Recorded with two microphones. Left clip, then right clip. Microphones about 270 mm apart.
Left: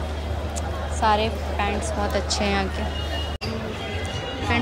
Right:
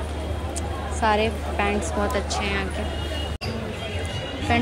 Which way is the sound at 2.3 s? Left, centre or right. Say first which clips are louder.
Left 2 dB; centre.